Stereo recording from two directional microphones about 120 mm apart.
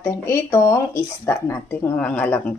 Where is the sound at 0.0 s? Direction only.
20° left (ahead or behind).